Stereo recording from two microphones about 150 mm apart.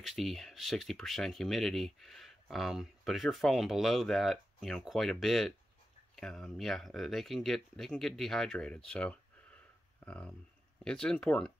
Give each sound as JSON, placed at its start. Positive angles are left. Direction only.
{"t": 0.0, "sound": "speech", "side_deg": 0}